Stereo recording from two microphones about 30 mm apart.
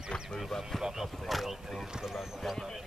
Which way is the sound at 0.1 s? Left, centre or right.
Left.